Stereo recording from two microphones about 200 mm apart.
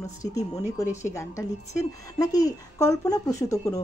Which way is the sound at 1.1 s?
15° left (ahead or behind).